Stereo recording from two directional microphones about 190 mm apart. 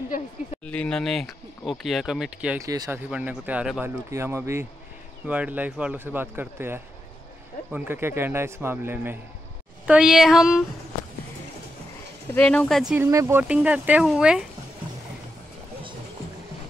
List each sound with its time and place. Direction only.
0.7 s speech: 5° left (ahead or behind)
2.6 s speech: 15° right (ahead or behind)
12.3 s speech: 5° left (ahead or behind)